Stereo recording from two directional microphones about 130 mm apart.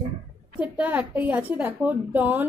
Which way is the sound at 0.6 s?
10° right (ahead or behind).